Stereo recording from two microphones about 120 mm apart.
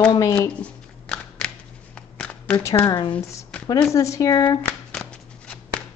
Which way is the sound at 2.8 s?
35° left (ahead or behind).